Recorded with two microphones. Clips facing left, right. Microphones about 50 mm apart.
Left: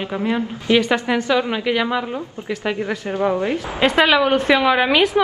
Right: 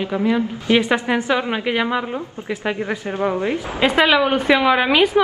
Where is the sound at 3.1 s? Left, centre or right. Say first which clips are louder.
Left 1 dB; right.